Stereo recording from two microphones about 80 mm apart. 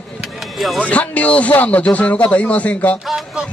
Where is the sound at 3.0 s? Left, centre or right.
Centre.